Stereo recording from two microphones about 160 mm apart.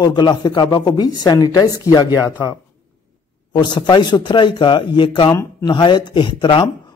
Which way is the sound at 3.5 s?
30° left (ahead or behind).